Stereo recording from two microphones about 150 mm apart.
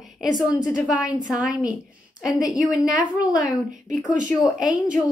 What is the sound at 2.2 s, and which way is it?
A woman's voice, 5° right (ahead or behind).